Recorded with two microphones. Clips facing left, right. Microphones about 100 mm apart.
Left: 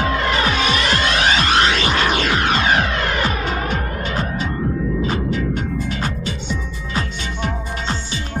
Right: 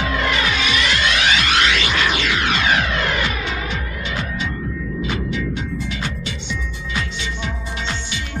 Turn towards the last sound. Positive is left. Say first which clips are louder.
# left 3 dB
turn(degrees=40)  # may be behind; listen again after turning